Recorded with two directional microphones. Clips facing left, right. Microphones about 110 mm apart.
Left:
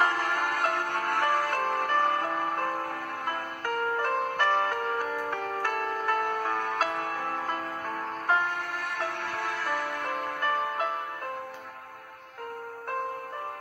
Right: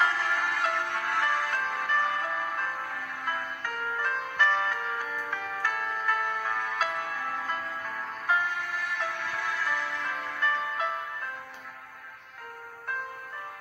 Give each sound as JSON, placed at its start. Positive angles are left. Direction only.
{"t": 0.0, "sound": "music", "side_deg": 55}